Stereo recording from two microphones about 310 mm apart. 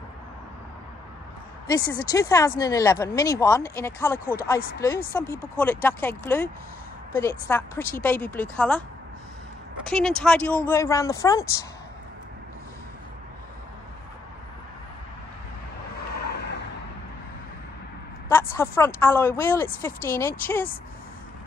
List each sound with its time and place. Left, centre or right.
1.7 s a woman's voice: centre
9.8 s a woman's voice: centre
16.1 s vehicle: left
18.3 s speech: centre